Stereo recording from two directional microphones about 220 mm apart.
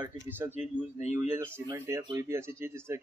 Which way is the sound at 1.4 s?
10° right (ahead or behind).